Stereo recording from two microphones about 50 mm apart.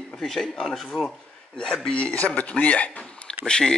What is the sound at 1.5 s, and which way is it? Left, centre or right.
Speech, centre.